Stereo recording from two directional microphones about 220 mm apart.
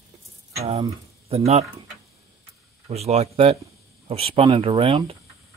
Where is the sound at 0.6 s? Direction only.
25° right (ahead or behind).